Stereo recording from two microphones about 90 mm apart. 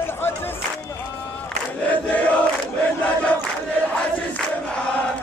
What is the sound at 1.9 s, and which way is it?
Crowd, 15° left (ahead or behind).